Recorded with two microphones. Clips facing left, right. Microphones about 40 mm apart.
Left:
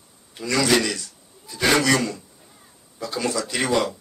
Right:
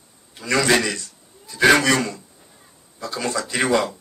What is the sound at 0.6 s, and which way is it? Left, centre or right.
Speech, right.